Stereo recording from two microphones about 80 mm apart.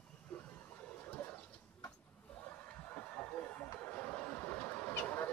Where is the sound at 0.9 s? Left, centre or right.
Left.